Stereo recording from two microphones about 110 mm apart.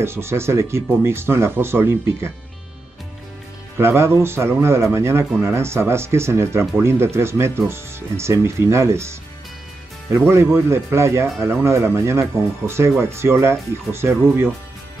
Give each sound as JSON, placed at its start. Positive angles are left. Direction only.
{"t": 0.0, "sound": "speech", "side_deg": -25}
{"t": 3.7, "sound": "speech", "side_deg": -25}